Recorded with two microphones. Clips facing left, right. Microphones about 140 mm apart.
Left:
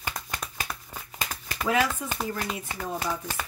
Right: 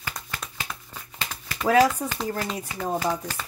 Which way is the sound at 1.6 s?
40° right (ahead or behind).